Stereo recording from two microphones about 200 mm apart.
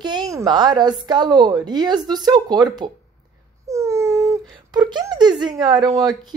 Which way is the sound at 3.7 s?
15° right (ahead or behind).